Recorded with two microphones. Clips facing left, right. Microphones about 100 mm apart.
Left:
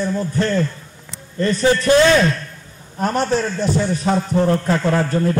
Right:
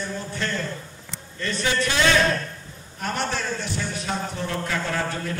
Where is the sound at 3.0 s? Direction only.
40° left (ahead or behind).